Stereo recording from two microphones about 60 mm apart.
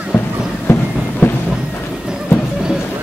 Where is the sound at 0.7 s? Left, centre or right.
Left.